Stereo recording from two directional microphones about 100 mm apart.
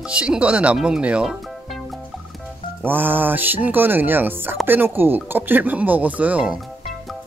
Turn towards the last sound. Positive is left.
turn(degrees=-15)  # may be behind; listen again after turning